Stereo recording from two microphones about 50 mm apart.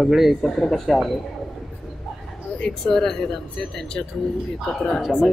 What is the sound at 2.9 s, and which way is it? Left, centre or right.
A man's voice, centre.